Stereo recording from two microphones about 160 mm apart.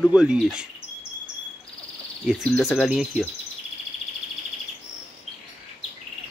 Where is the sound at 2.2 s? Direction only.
Centre (ahead or behind).